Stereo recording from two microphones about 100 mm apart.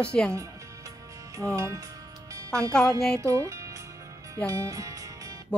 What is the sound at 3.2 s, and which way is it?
Speech, 30° right (ahead or behind).